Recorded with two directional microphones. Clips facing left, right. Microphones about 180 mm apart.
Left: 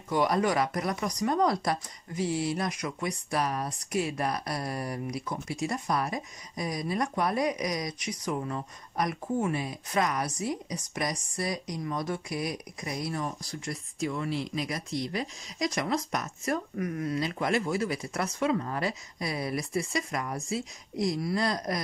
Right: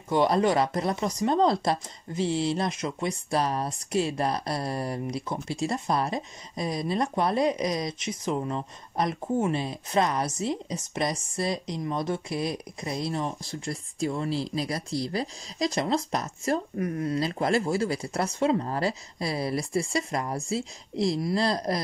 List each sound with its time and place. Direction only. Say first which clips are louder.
0.1 s speech: right 3 dB; 25° right (ahead or behind)